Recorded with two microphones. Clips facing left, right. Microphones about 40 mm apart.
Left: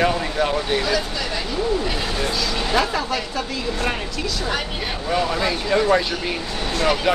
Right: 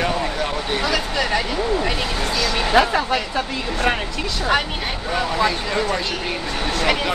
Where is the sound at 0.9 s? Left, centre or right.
Right.